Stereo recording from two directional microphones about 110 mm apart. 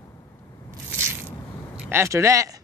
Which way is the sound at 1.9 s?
25° right (ahead or behind).